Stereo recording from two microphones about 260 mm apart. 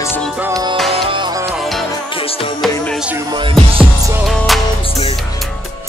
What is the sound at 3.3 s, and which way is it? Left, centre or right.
Music, centre.